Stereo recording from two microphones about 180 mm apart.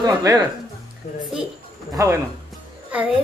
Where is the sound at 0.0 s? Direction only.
20° right (ahead or behind).